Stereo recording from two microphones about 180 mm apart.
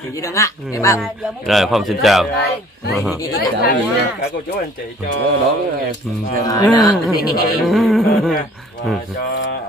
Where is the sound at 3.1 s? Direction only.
20° left (ahead or behind).